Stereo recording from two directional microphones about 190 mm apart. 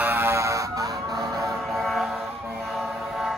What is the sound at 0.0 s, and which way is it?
Emergency vehicle, 10° right (ahead or behind).